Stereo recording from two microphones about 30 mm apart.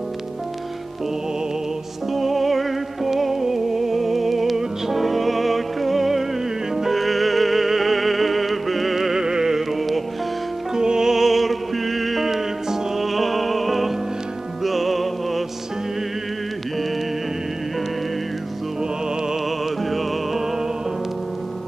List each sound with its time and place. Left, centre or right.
2.1 s music: centre
9.2 s music: right
9.7 s music: centre
10.7 s music: right; by 15.4 s centre